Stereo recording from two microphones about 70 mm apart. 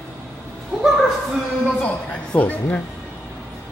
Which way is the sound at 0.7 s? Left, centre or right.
Centre.